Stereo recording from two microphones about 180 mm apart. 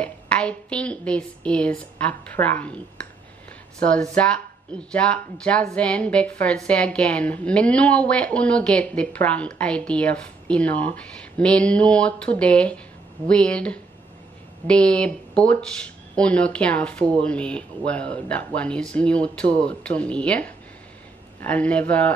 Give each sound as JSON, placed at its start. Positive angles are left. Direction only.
{"t": 0.0, "sound": "speech", "side_deg": 5}
{"t": 3.8, "sound": "speech", "side_deg": 5}